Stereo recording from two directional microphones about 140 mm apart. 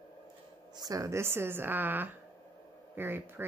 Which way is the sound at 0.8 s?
25° right (ahead or behind).